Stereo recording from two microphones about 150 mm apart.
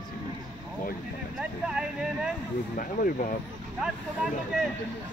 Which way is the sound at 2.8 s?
65° left (ahead or behind).